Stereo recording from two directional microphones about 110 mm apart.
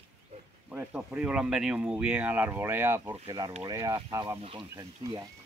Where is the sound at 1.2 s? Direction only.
10° right (ahead or behind).